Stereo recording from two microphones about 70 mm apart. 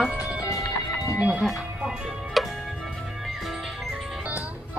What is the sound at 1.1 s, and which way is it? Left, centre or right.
Speech, centre.